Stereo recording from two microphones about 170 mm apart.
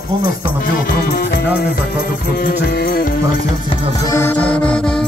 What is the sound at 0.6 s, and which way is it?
Music, 60° left (ahead or behind).